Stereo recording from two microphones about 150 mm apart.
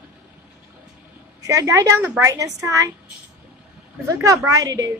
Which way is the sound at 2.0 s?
10° right (ahead or behind).